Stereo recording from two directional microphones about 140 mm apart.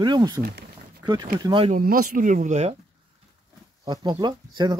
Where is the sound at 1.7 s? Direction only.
80° right; by 2.7 s 55° right (ahead or behind).